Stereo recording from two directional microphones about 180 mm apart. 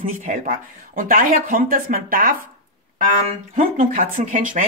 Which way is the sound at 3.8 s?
50° right (ahead or behind).